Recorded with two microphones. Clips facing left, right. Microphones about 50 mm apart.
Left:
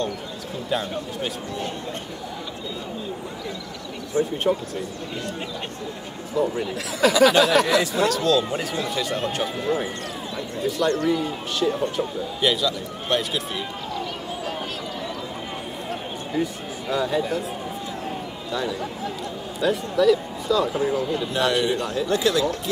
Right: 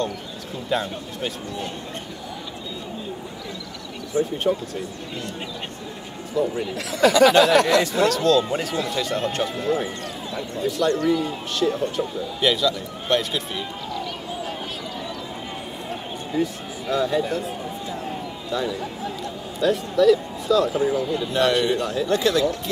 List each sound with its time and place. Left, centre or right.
0.7 s speech: centre
4.1 s speech: right
6.4 s a man's voice: centre
16.3 s speech: centre
18.5 s speech: centre